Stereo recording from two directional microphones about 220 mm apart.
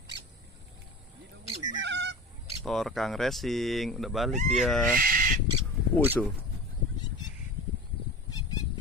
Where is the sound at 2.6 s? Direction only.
Centre (ahead or behind).